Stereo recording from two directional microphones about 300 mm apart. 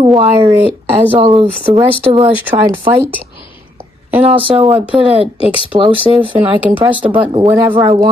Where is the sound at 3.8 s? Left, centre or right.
Centre.